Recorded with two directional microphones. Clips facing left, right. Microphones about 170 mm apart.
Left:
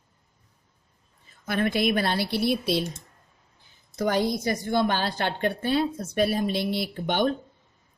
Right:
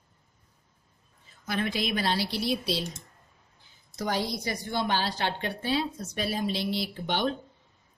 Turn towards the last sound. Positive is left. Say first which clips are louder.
# left 4 dB
turn(degrees=50)  # may be behind; listen again after turning